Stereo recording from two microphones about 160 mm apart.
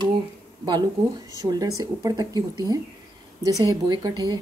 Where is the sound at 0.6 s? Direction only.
25° right (ahead or behind).